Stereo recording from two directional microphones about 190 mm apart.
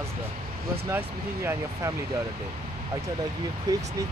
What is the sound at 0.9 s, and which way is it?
Speech, 15° right (ahead or behind).